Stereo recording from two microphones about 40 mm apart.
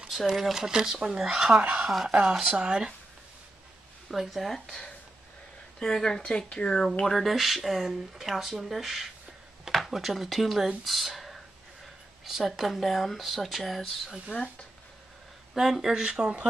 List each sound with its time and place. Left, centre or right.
0.3 s speech: centre
1.6 s speech: right
2.4 s speech: right
4.1 s speech: centre
4.5 s speech: centre
7.1 s speech: centre
14.3 s speech: left
15.5 s speech: centre
15.9 s speech: right